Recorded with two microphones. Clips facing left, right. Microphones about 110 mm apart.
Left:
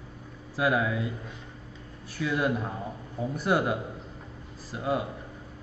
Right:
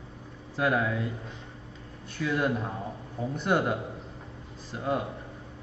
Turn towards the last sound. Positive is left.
turn(degrees=5)  # may be behind; listen again after turning